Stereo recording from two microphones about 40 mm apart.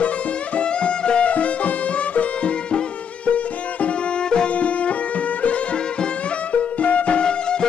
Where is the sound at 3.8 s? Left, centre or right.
Left.